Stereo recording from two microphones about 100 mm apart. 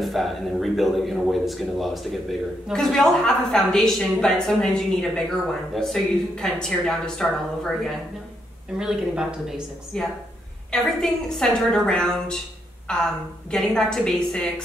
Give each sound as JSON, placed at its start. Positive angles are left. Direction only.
{"t": 0.0, "sound": "a woman's voice", "side_deg": 0}